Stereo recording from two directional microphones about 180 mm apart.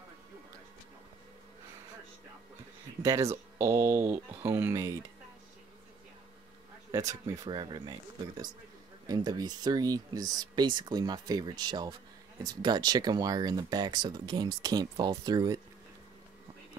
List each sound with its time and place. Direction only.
3.0 s speech: 20° right (ahead or behind)
6.9 s speech: 20° right (ahead or behind)
9.0 s speech: 20° right (ahead or behind)